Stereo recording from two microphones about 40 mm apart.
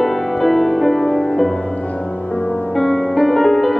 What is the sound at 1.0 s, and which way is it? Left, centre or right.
Music, centre.